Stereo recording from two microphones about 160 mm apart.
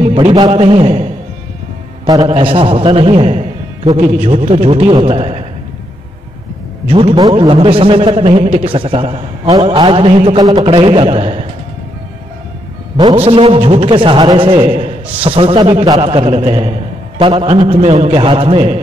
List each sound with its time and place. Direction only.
0.1 s a man's voice: 30° right (ahead or behind)
2.0 s a man's voice: 30° right (ahead or behind)
6.9 s a man's voice: 35° right (ahead or behind)
12.9 s a man's voice: 35° right (ahead or behind)